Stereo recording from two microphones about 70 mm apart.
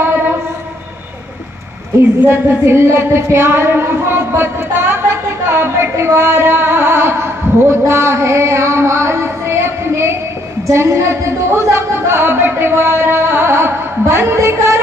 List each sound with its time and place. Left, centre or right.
2.2 s a woman's voice: right